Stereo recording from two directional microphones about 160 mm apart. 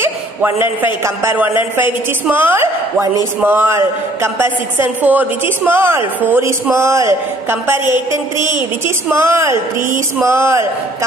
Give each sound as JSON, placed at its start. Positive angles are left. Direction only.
{"t": 0.0, "sound": "a man's voice", "side_deg": -15}